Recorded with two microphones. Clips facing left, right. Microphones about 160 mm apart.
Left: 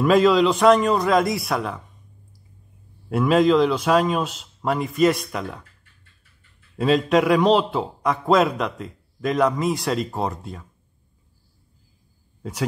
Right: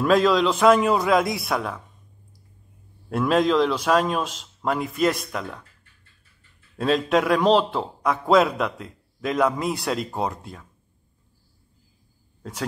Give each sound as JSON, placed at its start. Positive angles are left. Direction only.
{"t": 0.0, "sound": "a man's voice", "side_deg": 0}
{"t": 3.1, "sound": "a man's voice", "side_deg": 5}
{"t": 6.8, "sound": "a man's voice", "side_deg": 0}